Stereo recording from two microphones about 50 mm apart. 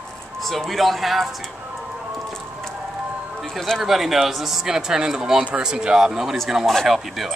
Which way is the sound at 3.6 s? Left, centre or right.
Centre.